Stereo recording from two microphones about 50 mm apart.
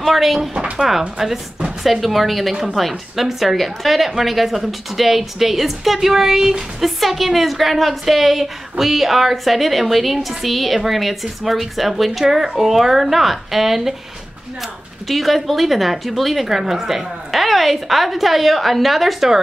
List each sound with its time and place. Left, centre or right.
0.0 s speech: centre
0.6 s speech: centre
1.1 s speech: centre
15.0 s speech: centre